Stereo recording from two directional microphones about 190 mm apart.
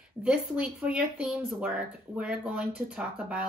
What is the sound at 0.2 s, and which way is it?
Speech, 5° right (ahead or behind).